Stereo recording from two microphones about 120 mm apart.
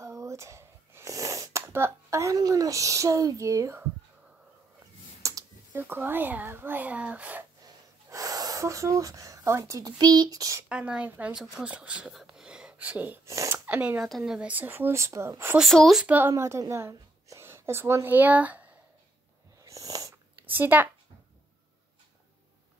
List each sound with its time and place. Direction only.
0.0 s a sound: 25° right (ahead or behind)
5.2 s a child's voice: 20° right (ahead or behind)
7.6 s speech: 30° right (ahead or behind)
10.7 s speech: 10° right (ahead or behind)
13.3 s speech: 25° right (ahead or behind)
13.7 s speech: 10° right (ahead or behind)
15.5 s speech: centre (ahead or behind)
16.1 s a woman's voice: 15° right (ahead or behind)
19.6 s owl: 30° right (ahead or behind)
20.4 s speech: 15° right (ahead or behind)